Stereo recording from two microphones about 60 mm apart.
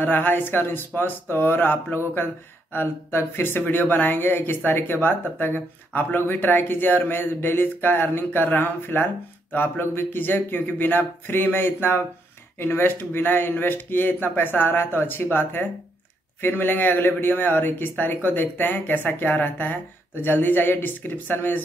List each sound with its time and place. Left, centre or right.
0.0 s speech: left